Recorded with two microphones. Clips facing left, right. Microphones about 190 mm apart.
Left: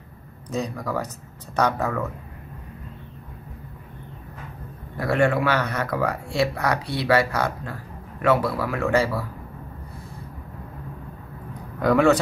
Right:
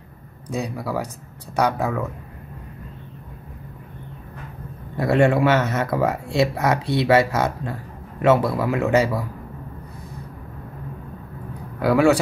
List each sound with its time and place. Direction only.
0.5 s speech: 10° right (ahead or behind)
4.9 s speech: 25° right (ahead or behind)
11.8 s speech: 5° right (ahead or behind)